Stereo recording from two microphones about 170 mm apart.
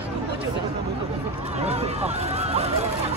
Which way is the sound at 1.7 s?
40° right (ahead or behind).